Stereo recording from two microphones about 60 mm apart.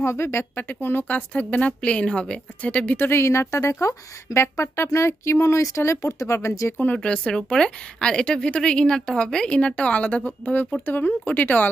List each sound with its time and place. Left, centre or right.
0.0 s speech: left
0.6 s a woman's voice: left
3.0 s speech: left
7.0 s a woman's voice: centre